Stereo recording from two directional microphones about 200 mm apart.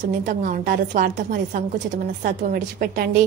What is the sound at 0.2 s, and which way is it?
A woman's voice, 45° right (ahead or behind).